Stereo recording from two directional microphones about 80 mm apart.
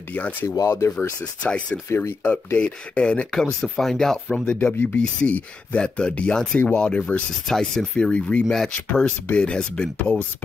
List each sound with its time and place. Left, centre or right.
0.1 s speech: left
0.6 s speech: left
0.9 s speech: centre
1.9 s speech: left
2.3 s speech: centre
7.4 s speech: centre
7.9 s speech: centre